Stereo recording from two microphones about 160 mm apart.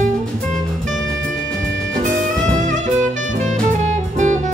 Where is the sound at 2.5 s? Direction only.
50° right (ahead or behind).